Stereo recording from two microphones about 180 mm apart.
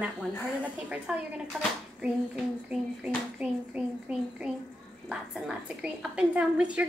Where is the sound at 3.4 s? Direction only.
5° right (ahead or behind).